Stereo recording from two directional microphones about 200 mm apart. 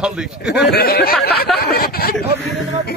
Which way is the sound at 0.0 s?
5° right (ahead or behind).